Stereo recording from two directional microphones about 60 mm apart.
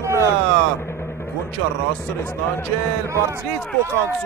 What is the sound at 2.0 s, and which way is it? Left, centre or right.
Speech, left.